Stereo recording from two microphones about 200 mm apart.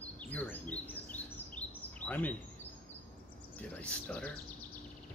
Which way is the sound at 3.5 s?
5° left (ahead or behind).